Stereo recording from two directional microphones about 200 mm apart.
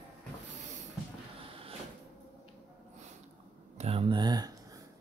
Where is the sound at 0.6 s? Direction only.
35° right (ahead or behind).